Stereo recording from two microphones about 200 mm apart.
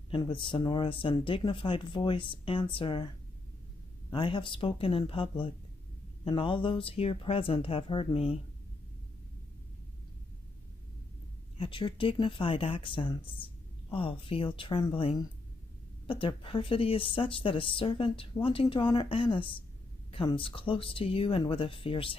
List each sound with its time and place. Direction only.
0.1 s speech: 25° left (ahead or behind)
4.1 s speech: 25° left (ahead or behind)
11.5 s speech: 25° left (ahead or behind)